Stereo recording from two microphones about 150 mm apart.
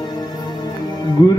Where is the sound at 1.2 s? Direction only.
25° left (ahead or behind).